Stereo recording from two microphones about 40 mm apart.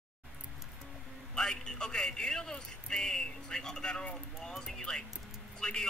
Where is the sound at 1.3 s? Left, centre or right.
Centre.